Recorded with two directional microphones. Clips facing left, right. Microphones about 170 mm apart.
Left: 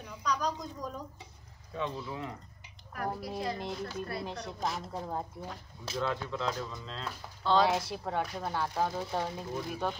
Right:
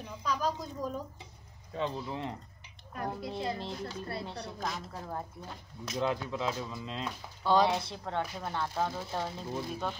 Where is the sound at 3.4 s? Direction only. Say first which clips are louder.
Right 2 dB; 25° right (ahead or behind).